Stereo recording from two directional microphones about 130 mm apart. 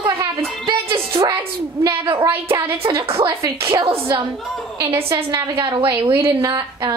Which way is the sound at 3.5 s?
40° right (ahead or behind).